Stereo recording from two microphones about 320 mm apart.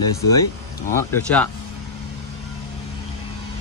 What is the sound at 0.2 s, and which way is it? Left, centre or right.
Speech, left.